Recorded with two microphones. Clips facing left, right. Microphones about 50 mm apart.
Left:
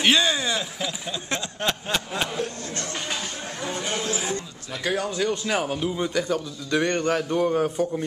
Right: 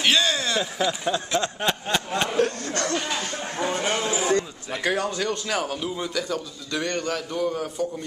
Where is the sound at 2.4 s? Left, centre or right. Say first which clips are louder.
Right 6 dB; right.